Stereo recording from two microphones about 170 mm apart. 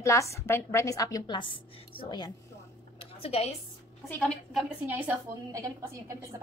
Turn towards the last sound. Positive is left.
turn(degrees=-15)  # may be behind; listen again after turning